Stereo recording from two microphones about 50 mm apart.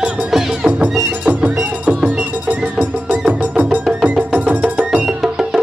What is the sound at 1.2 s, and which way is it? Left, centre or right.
Music, right.